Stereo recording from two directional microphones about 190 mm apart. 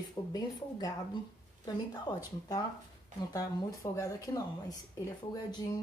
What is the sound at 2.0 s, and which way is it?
A woman's voice, 20° left (ahead or behind).